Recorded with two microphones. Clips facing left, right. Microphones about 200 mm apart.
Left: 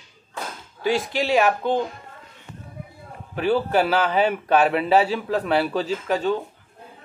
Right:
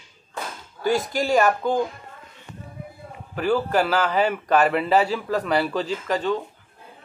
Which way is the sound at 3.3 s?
5° left (ahead or behind).